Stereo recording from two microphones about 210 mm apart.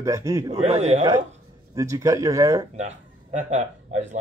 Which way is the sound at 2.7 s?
35° right (ahead or behind).